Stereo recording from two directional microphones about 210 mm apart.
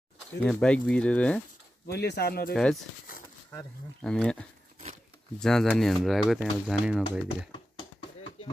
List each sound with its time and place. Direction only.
0.4 s speech: 5° left (ahead or behind)
1.9 s speech: 50° left (ahead or behind)
2.5 s speech: centre (ahead or behind)
3.1 s a sound: 45° left (ahead or behind)
4.0 s speech: 5° left (ahead or behind)